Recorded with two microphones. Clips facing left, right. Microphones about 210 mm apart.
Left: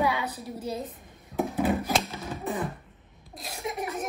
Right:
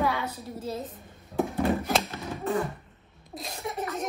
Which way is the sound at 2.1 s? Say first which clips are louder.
Right 3 dB; 15° left (ahead or behind).